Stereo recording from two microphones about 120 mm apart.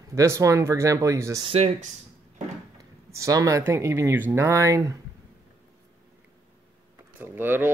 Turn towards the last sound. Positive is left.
turn(degrees=-15)  # may be behind; listen again after turning